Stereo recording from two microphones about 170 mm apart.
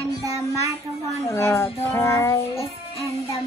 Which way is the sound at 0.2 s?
20° right (ahead or behind).